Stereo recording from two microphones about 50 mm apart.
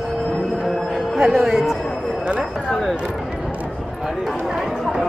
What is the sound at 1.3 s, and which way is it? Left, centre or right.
Speech, centre.